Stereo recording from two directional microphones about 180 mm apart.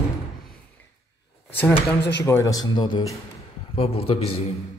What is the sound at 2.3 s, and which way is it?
A man's voice, 15° left (ahead or behind).